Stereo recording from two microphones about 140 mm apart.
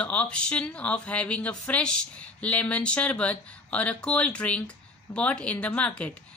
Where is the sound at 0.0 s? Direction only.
10° left (ahead or behind).